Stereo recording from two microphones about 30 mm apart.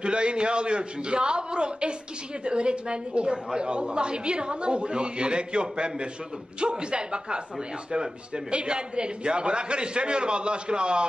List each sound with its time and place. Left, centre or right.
0.0 s a woman's voice: right